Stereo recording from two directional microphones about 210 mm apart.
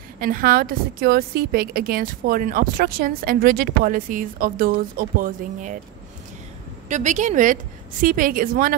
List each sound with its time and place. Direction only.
0.2 s a woman's voice: 45° right (ahead or behind)
6.9 s a woman's voice: 35° right (ahead or behind)